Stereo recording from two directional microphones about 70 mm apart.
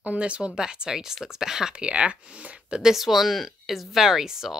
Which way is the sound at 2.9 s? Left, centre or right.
Centre.